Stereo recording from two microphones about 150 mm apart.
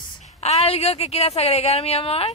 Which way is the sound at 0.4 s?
45° left (ahead or behind).